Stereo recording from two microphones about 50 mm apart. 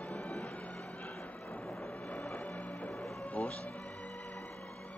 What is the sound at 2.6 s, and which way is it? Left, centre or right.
Music, left.